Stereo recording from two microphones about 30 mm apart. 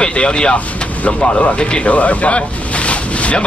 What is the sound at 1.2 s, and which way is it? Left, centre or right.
A man's voice, left.